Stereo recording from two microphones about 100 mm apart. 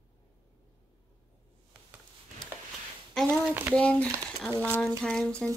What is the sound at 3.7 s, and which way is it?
Speech, 10° left (ahead or behind).